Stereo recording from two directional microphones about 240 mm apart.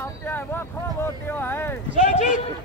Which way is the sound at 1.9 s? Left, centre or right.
Left.